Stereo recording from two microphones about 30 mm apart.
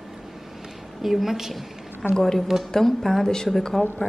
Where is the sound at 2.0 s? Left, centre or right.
Left.